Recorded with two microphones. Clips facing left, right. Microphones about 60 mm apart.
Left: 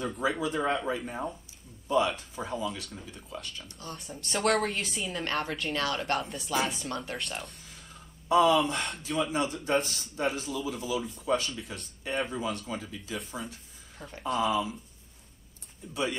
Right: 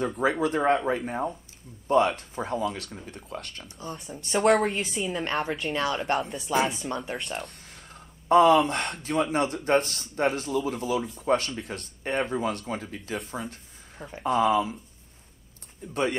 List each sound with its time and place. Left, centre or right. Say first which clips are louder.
0.2 s speech: right 5 dB; right
1.9 s speech: right 5 dB; right
4.3 s a woman's voice: right 5 dB; centre
5.1 s a woman's voice: right 2 dB; centre
6.1 s speech: right 4 dB; centre
6.9 s a woman's voice: right 4 dB; centre
7.2 s a woman's voice: right 3 dB; centre
7.4 s speech: right 3 dB; right
15.9 s speech: right 5 dB; right